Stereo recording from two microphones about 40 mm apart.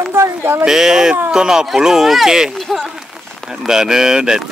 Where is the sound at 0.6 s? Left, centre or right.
Centre.